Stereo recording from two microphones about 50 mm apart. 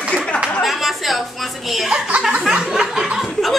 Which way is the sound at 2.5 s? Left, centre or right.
Centre.